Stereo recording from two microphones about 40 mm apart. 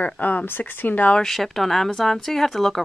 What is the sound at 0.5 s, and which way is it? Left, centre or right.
Speech, left.